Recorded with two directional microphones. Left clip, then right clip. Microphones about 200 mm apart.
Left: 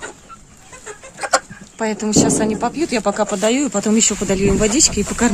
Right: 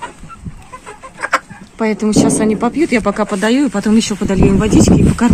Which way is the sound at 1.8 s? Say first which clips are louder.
Right 3 dB; 15° right (ahead or behind).